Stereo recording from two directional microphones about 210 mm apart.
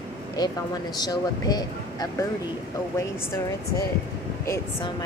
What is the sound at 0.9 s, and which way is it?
Speech, 20° left (ahead or behind).